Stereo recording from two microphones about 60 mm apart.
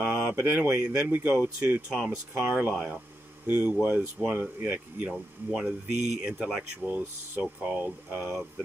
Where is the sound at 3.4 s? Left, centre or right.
Right.